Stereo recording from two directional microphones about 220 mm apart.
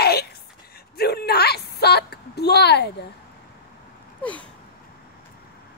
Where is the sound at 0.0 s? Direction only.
45° left (ahead or behind).